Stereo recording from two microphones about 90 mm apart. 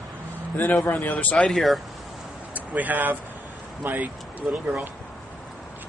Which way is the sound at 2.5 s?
20° right (ahead or behind).